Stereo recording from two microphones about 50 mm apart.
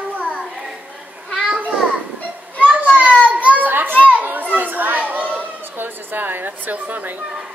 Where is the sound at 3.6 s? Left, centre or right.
Right.